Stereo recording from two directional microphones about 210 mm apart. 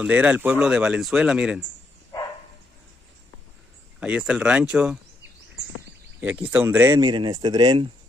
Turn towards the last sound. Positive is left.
turn(degrees=-20)  # may be behind; listen again after turning